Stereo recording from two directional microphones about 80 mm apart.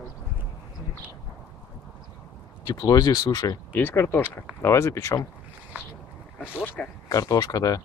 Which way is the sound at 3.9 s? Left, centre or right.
Left.